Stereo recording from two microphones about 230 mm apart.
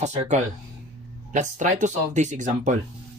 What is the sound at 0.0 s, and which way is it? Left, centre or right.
Speech, right.